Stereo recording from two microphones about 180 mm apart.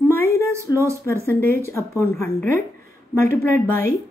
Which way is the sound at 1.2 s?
15° left (ahead or behind).